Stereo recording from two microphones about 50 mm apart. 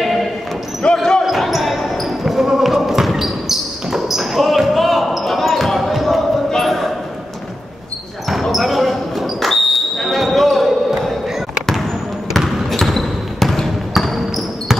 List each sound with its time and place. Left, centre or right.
0.8 s basketball bounce: centre
1.2 s basketball bounce: centre
8.3 s basketball bounce: centre
12.4 s trickle: centre